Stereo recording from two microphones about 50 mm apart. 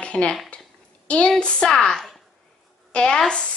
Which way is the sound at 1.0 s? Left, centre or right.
Left.